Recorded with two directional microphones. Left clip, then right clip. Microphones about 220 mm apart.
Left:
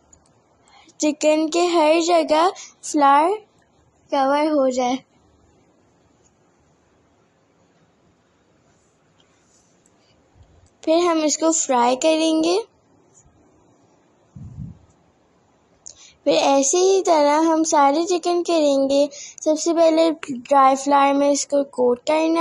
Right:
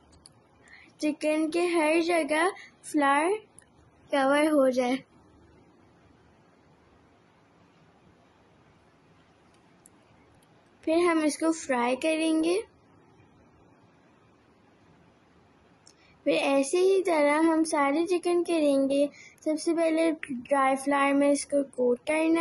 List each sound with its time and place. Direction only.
0.7 s a sound: 25° left (ahead or behind)
1.4 s a woman's voice: 25° left (ahead or behind)
10.8 s speech: 20° left (ahead or behind)
15.9 s speech: 20° left (ahead or behind)